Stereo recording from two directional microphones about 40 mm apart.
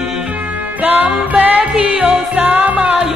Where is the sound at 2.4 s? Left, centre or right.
Right.